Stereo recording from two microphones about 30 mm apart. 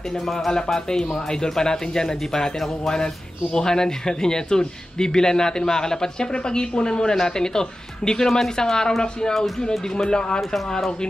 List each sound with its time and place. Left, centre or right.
0.7 s speech: centre
3.5 s speech: left
6.3 s speech: left